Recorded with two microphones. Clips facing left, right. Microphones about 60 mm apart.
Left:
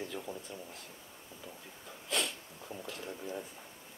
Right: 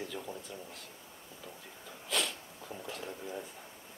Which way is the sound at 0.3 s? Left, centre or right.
Left.